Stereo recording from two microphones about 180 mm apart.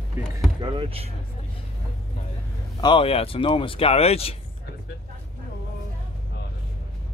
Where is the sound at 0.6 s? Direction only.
30° right (ahead or behind).